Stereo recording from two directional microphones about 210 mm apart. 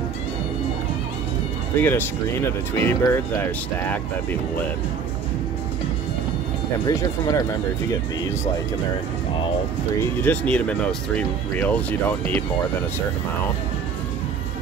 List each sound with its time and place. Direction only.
1.8 s speech: 10° left (ahead or behind)
6.9 s speech: 15° left (ahead or behind)
10.2 s speech: 5° left (ahead or behind)